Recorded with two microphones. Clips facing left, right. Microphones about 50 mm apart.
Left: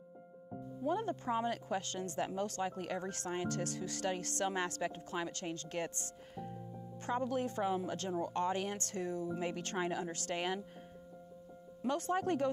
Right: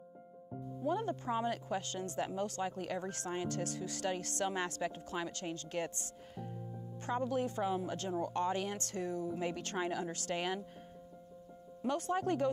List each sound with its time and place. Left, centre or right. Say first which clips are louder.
0.8 s speech: even; left
11.8 s speech: even; left